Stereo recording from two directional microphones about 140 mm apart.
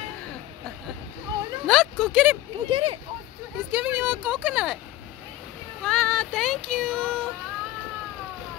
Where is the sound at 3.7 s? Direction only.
10° right (ahead or behind).